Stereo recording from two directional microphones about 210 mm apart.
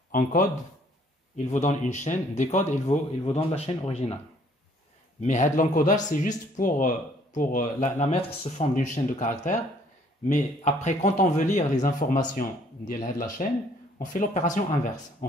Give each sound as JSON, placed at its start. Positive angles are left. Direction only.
{"t": 0.1, "sound": "speech", "side_deg": 40}
{"t": 5.2, "sound": "speech", "side_deg": 35}